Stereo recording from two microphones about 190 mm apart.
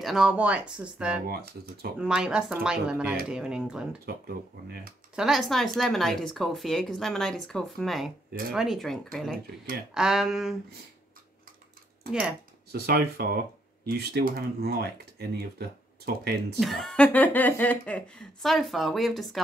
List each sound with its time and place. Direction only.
0.0 s speech: 5° right (ahead or behind)
1.2 s speech: 50° right (ahead or behind)
2.0 s speech: 5° right (ahead or behind)
5.1 s speech: centre (ahead or behind)
12.1 s speech: 5° right (ahead or behind)
12.7 s speech: 55° right (ahead or behind)
16.5 s speech: centre (ahead or behind)